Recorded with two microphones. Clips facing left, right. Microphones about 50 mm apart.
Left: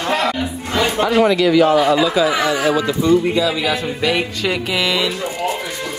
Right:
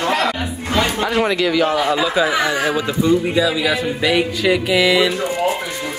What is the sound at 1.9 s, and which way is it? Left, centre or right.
Speech, right.